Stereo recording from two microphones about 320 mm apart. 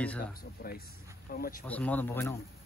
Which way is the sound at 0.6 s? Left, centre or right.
Left.